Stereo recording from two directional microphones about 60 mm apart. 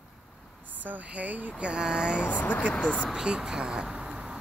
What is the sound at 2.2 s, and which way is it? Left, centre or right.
Speech, left.